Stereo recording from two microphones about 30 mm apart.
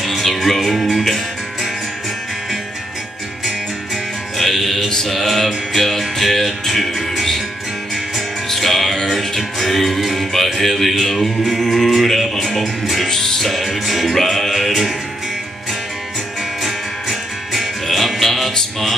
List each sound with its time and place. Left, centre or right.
0.2 s music: centre
3.9 s music: centre
8.5 s music: centre
13.1 s music: centre
13.5 s music: centre
16.6 s music: centre